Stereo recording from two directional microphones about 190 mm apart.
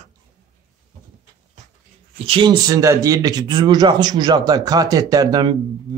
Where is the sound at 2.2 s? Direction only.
25° right (ahead or behind).